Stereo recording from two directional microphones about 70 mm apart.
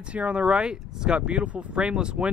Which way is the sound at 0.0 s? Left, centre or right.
Centre.